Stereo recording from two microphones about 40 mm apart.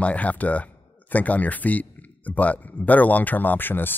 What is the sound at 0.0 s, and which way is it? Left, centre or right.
Speech, left.